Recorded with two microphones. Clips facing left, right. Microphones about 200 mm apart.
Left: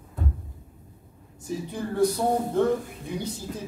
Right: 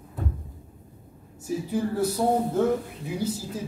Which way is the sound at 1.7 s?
5° right (ahead or behind).